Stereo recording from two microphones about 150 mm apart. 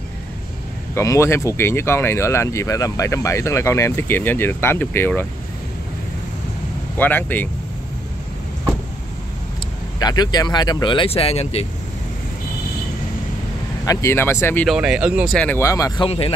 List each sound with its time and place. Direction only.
0.9 s speech: 20° left (ahead or behind)
7.0 s speech: 10° left (ahead or behind)
9.9 s speech: 25° left (ahead or behind); by 11.6 s 40° left (ahead or behind)
13.8 s speech: 15° left (ahead or behind)
14.7 s speech: 5° right (ahead or behind)
15.3 s speech: 10° left (ahead or behind)
16.1 s speech: 40° left (ahead or behind)